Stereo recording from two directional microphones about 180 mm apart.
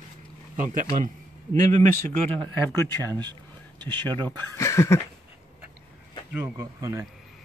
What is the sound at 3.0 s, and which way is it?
Speech, 20° right (ahead or behind).